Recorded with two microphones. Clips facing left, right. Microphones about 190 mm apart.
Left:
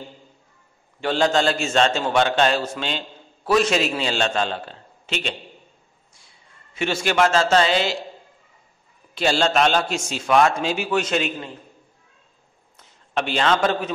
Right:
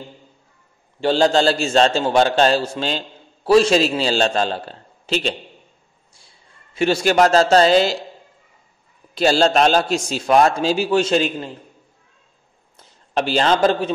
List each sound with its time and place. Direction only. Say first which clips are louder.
1.0 s a man's voice: right 4 dB; 30° right (ahead or behind)
6.7 s a man's voice: right 6 dB; 35° right (ahead or behind)
9.1 s a man's voice: right 4 dB; 40° right (ahead or behind)
12.7 s a man's voice: right 4 dB; 35° right (ahead or behind)